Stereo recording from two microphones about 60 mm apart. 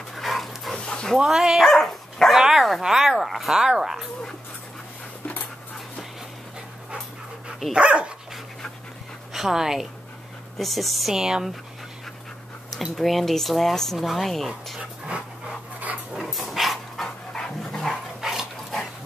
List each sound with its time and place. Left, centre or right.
0.1 s dog: centre
0.7 s dog: centre
1.1 s speech: centre
1.7 s dog: centre
2.3 s dog: centre
2.8 s speech: centre
7.7 s speech: centre
9.3 s speech: centre
12.9 s speech: centre
14.8 s dog: centre
16.2 s dog: centre
18.2 s dog: centre